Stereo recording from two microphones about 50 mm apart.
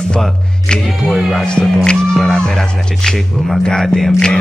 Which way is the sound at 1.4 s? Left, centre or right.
Centre.